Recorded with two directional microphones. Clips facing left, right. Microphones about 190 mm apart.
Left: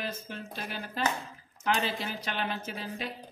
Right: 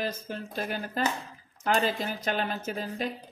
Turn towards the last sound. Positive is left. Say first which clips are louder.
# right 5 dB
turn(degrees=-45)  # may be behind; listen again after turning